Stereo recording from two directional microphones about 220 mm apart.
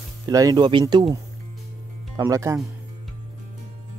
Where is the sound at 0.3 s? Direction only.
15° right (ahead or behind).